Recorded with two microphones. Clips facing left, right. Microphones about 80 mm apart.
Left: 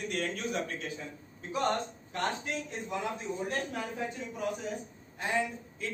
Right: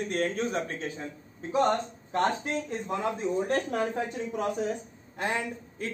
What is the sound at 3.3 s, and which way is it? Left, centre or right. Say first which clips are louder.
Speech: right 7 dB; right.